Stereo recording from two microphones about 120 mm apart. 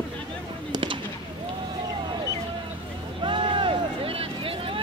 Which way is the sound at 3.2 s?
40° right (ahead or behind).